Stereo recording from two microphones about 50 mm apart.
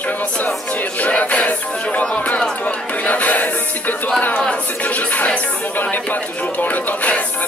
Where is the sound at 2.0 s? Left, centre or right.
Left.